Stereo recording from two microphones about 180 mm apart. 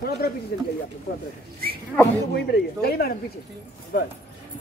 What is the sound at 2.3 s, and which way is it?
Speech, 60° left (ahead or behind).